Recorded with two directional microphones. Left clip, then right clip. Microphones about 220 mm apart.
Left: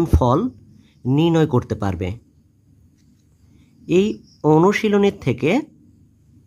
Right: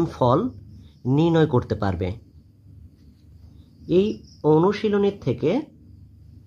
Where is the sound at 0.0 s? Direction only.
25° left (ahead or behind).